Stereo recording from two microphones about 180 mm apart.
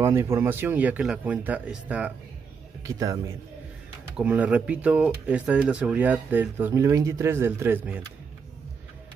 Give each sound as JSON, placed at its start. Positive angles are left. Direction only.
{"t": 0.0, "sound": "speech", "side_deg": -15}
{"t": 2.8, "sound": "speech", "side_deg": -20}
{"t": 4.2, "sound": "speech", "side_deg": -10}